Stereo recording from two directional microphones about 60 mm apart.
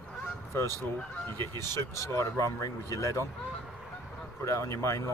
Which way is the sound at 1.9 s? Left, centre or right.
Left.